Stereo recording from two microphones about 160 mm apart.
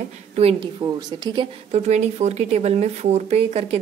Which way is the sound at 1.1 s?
25° right (ahead or behind).